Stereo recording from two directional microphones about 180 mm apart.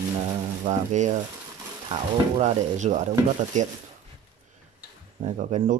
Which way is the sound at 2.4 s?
40° right (ahead or behind).